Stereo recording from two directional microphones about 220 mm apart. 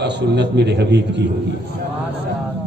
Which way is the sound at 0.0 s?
50° right (ahead or behind).